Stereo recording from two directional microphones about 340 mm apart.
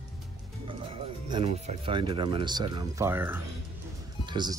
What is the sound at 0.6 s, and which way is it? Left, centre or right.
Speech, centre.